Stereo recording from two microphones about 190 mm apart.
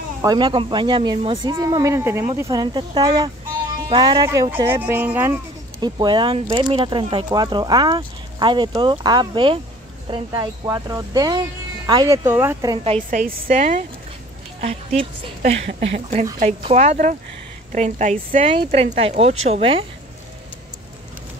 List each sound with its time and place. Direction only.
0.2 s speech: 20° right (ahead or behind)
4.8 s speech: 10° right (ahead or behind)
12.8 s a woman's voice: 30° right (ahead or behind)
13.2 s a woman's voice: 45° right (ahead or behind)
14.6 s a woman's voice: 30° right (ahead or behind)